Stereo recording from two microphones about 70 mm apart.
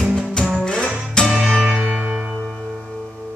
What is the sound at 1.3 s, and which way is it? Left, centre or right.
Music, centre.